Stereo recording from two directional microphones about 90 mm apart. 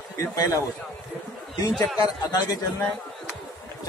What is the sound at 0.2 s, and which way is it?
Speech, 40° left (ahead or behind).